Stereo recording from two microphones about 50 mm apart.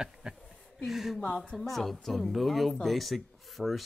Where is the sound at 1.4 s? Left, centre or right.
Centre.